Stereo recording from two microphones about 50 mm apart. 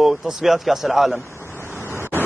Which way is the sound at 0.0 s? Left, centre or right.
Centre.